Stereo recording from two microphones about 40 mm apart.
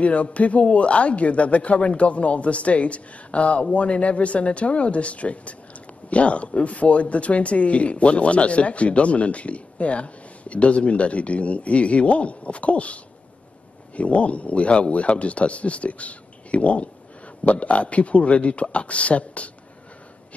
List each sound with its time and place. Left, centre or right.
0.0 s speech: left